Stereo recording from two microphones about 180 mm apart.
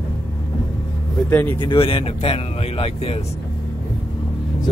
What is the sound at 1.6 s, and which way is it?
Speech, 30° left (ahead or behind).